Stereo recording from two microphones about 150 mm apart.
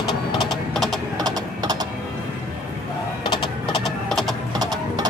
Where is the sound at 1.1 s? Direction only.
25° right (ahead or behind).